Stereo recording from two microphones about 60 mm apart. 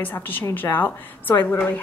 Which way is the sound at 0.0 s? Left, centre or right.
Left.